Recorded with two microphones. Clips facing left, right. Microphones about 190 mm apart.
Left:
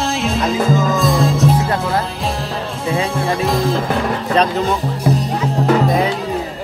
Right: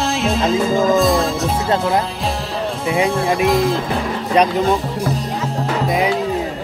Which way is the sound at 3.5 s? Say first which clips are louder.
Right 1 dB; centre (ahead or behind).